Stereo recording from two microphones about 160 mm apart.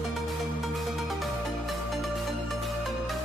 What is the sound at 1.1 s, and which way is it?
Music, centre (ahead or behind).